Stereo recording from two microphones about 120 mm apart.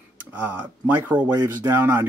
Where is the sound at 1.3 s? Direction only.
25° right (ahead or behind).